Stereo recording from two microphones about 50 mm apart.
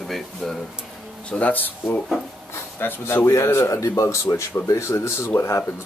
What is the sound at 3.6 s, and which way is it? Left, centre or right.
Speech, left.